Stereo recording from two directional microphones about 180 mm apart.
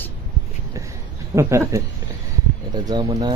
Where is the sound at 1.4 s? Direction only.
15° right (ahead or behind).